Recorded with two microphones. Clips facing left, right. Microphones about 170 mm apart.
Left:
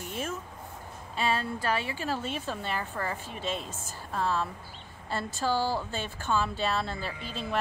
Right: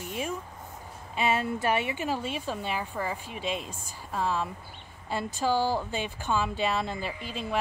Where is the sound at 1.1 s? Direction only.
20° right (ahead or behind).